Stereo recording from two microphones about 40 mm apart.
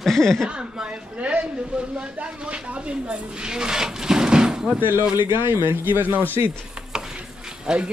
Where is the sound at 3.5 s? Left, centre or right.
Centre.